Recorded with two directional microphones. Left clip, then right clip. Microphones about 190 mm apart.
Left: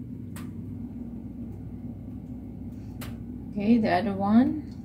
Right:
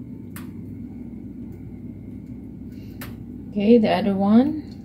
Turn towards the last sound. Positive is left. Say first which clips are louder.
# right 5 dB
turn(degrees=-35)  # may be behind; listen again after turning